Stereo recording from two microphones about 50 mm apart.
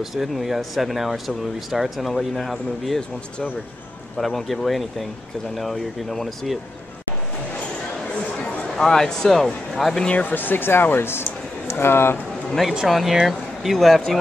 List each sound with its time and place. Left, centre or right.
0.0 s speech: centre
4.2 s speech: centre
8.7 s speech: centre
10.0 s speech: left
10.3 s speech: left
12.8 s speech: centre